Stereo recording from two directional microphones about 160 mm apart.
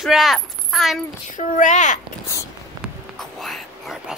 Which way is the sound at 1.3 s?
50° left (ahead or behind).